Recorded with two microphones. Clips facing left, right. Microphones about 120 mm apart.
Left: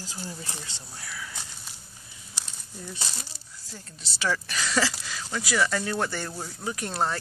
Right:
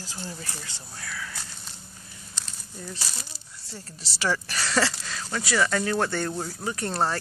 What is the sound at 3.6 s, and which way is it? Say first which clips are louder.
Speech: right 3 dB; 35° right (ahead or behind).